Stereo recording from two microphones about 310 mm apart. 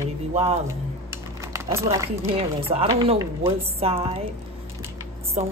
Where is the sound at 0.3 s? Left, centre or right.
Centre.